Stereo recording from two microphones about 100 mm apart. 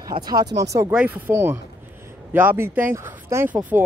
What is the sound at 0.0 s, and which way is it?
Speech, 40° right (ahead or behind).